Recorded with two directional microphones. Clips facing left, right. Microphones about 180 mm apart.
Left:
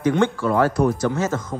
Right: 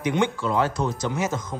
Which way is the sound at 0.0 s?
15° right (ahead or behind).